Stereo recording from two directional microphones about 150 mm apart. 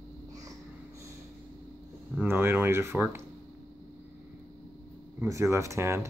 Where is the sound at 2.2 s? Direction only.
15° right (ahead or behind).